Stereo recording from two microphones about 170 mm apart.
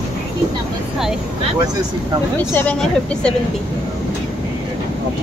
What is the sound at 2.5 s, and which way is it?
Speech, 5° left (ahead or behind).